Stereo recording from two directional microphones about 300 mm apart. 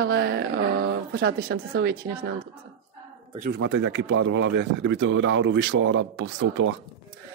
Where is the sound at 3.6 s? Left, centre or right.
Right.